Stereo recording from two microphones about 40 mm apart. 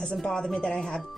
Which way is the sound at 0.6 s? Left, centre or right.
Left.